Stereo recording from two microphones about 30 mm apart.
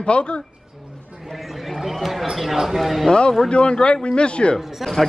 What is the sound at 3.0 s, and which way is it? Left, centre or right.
Speech, left.